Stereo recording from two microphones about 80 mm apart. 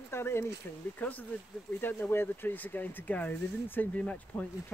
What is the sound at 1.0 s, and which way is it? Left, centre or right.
Speech, left.